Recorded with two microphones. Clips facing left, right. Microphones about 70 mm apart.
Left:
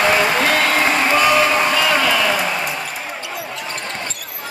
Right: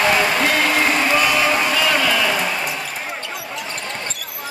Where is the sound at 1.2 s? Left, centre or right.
Centre.